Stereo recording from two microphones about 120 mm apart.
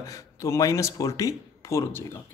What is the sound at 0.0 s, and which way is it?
A man's voice, 30° left (ahead or behind).